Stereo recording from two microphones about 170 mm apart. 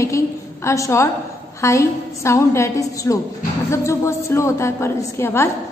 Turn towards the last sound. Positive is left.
turn(degrees=15)  # may be behind; listen again after turning